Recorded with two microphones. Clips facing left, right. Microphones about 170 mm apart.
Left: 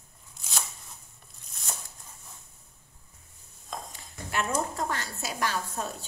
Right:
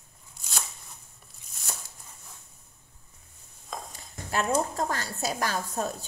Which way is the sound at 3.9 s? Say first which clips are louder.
Right 3 dB; 35° right (ahead or behind).